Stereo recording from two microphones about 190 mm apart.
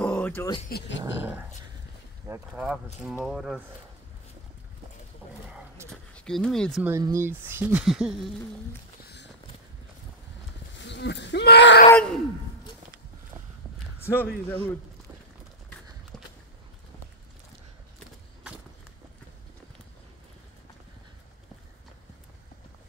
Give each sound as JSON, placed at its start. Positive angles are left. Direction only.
{"t": 0.0, "sound": "a sound", "side_deg": 10}
{"t": 0.7, "sound": "speech", "side_deg": 65}
{"t": 2.2, "sound": "speech", "side_deg": -10}
{"t": 5.9, "sound": "speech", "side_deg": 5}
{"t": 6.8, "sound": "speech", "side_deg": -15}
{"t": 10.7, "sound": "speech", "side_deg": 65}
{"t": 11.9, "sound": "groan", "side_deg": 5}
{"t": 14.0, "sound": "speech", "side_deg": 10}